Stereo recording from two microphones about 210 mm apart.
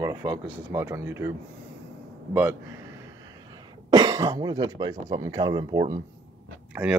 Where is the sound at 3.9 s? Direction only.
20° right (ahead or behind).